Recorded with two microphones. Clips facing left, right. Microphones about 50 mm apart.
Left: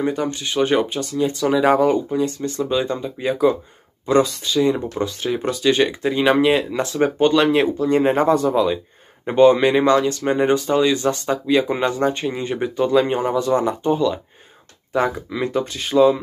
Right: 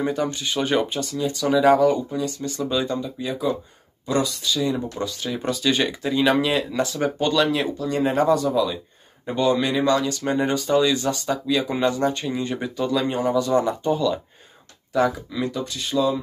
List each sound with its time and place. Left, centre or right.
0.0 s speech: centre
3.2 s speech: left
5.4 s speech: centre
11.4 s speech: left